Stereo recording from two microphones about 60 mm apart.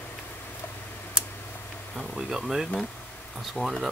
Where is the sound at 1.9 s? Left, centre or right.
Centre.